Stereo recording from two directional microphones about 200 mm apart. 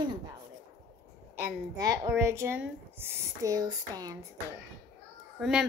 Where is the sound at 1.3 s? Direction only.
15° right (ahead or behind).